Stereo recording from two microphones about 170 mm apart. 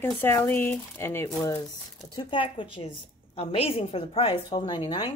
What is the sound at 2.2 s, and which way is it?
A woman's voice, 30° left (ahead or behind).